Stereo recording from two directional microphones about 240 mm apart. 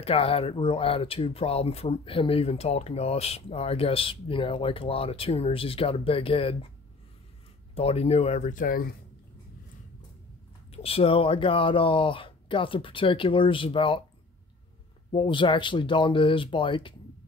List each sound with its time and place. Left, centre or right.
0.0 s speech: left
7.7 s speech: left
10.7 s speech: left
15.0 s speech: left